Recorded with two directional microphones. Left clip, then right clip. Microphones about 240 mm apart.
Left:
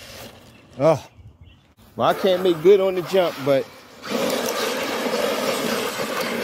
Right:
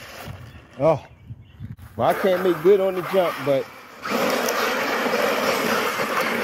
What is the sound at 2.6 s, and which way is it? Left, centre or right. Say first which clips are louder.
Vehicle: left 2 dB; centre.